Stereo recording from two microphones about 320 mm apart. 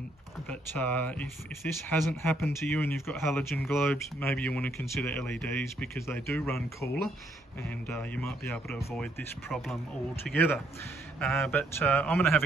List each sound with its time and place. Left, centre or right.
0.5 s speech: centre